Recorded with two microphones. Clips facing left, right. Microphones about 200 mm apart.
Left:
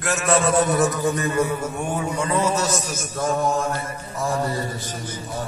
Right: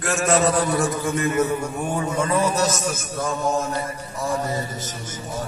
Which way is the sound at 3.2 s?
55° left (ahead or behind).